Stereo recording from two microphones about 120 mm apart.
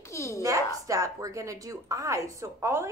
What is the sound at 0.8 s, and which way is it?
A woman's voice, 25° right (ahead or behind).